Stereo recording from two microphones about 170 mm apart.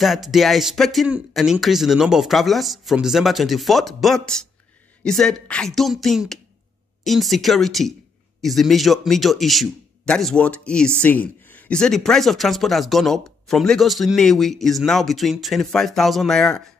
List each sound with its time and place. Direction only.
0.0 s speech: centre (ahead or behind)